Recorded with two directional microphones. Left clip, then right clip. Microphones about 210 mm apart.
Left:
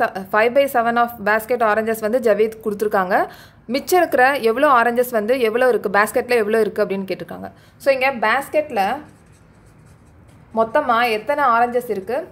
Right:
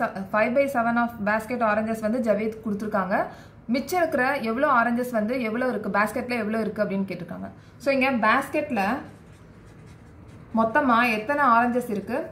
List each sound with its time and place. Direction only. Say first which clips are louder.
0.0 s a woman's voice: left 7 dB; 50° left (ahead or behind)
10.5 s a woman's voice: left 4 dB; 50° left (ahead or behind)